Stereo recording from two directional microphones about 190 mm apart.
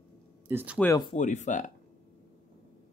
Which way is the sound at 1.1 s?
40° left (ahead or behind).